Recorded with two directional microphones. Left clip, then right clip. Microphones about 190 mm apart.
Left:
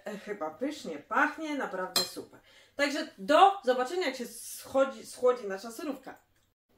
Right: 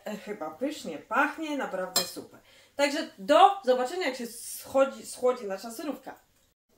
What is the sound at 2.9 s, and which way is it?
Speech, 15° left (ahead or behind).